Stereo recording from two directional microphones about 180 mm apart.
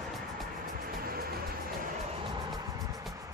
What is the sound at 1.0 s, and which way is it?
Music, 55° right (ahead or behind).